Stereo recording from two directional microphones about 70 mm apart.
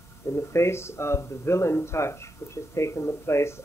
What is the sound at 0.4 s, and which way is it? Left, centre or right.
Speech, left.